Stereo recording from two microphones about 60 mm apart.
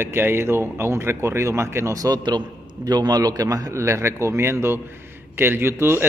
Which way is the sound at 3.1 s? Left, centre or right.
Right.